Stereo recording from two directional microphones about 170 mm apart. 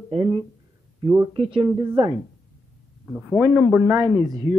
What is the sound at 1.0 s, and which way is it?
Speech, 20° right (ahead or behind).